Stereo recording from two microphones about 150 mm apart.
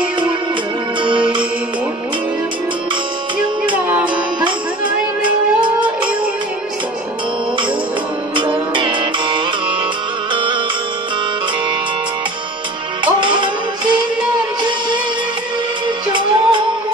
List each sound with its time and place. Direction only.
1.0 s music: 35° right (ahead or behind)
4.5 s music: 35° right (ahead or behind)
8.4 s music: 35° right (ahead or behind)
13.0 s music: 35° right (ahead or behind)
16.1 s music: 35° right (ahead or behind)